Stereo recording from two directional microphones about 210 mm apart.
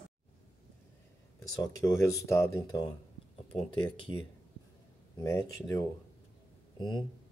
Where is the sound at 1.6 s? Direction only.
15° left (ahead or behind).